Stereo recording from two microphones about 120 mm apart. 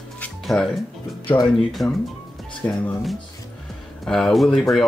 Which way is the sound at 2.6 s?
20° left (ahead or behind).